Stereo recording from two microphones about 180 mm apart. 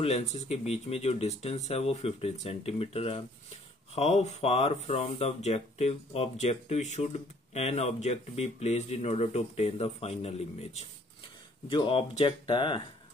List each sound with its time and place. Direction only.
0.0 s speech: 40° left (ahead or behind)